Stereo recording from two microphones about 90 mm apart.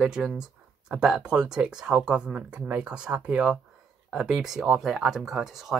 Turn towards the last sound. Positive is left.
turn(degrees=-5)  # may be behind; listen again after turning